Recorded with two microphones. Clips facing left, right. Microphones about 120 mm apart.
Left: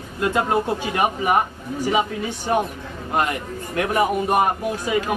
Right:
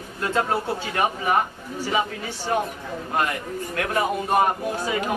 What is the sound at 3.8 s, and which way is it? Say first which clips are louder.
Speech: left 5 dB; 15° left (ahead or behind).